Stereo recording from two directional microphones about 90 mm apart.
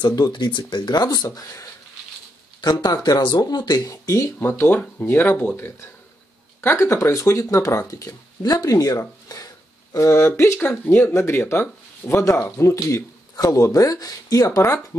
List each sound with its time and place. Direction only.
0.0 s speech: 55° left (ahead or behind); by 12.4 s 30° left (ahead or behind)
12.7 s speech: 40° left (ahead or behind)